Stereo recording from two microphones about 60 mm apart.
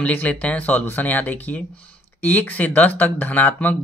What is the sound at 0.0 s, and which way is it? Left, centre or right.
Speech, left.